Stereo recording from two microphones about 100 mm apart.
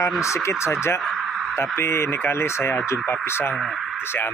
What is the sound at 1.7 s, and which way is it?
Speech, 25° left (ahead or behind).